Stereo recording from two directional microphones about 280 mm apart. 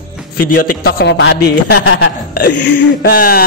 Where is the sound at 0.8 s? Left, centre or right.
Left.